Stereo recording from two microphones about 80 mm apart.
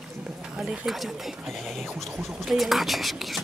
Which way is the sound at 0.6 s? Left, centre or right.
Centre.